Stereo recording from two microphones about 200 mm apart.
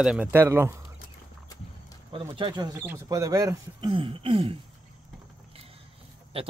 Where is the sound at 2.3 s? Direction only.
25° right (ahead or behind).